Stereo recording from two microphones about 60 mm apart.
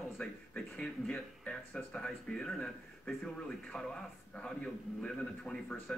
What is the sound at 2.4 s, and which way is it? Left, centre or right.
Speech, centre.